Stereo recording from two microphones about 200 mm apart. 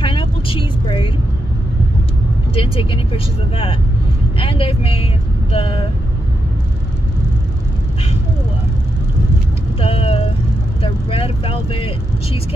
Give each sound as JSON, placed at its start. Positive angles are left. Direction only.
{"t": 0.0, "sound": "vehicle", "side_deg": 25}
{"t": 2.5, "sound": "speech", "side_deg": 25}
{"t": 9.8, "sound": "vehicle", "side_deg": 30}